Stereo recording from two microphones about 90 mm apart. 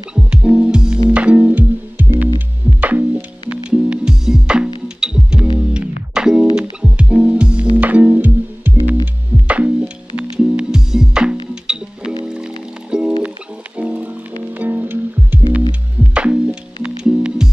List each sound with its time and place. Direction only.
0.1 s music: 10° right (ahead or behind)